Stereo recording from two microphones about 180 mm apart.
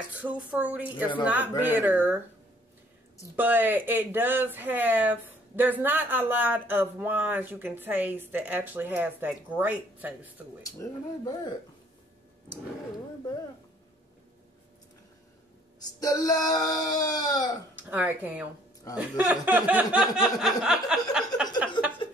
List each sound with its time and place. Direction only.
0.2 s speech: 10° right (ahead or behind)
3.3 s speech: 10° right (ahead or behind)
10.6 s speech: 20° left (ahead or behind)
15.8 s speech: 20° left (ahead or behind)
17.7 s speech: 10° right (ahead or behind)